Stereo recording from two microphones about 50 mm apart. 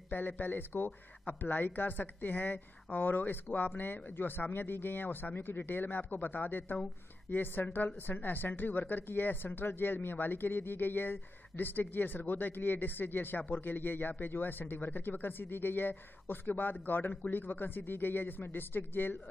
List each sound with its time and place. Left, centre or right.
0.1 s speech: left